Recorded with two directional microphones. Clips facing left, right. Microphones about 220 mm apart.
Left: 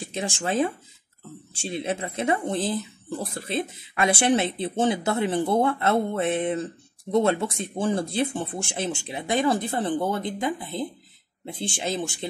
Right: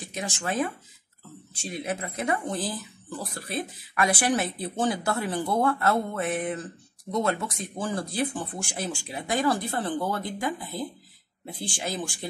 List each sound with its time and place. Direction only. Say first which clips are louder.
0.0 s speech: left 4 dB; 30° left (ahead or behind)